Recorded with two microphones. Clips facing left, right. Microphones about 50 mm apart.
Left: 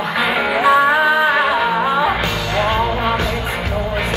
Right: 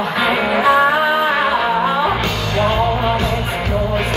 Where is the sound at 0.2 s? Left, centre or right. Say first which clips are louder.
Right 1 dB; centre.